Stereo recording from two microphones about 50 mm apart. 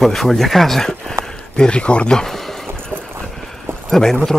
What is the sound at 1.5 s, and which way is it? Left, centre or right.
Speech, centre.